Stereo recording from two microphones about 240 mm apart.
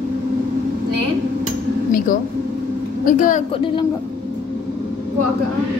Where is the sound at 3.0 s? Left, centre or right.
Left.